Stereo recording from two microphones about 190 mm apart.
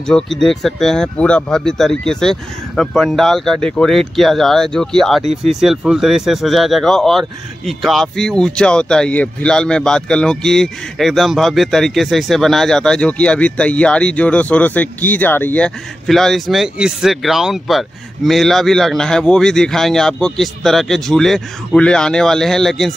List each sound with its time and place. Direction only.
0.0 s speech: 5° left (ahead or behind)
5.2 s speech: 35° right (ahead or behind)
5.5 s speech: centre (ahead or behind)